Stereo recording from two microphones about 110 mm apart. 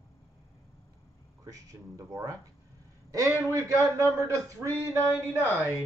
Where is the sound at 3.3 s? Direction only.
30° right (ahead or behind).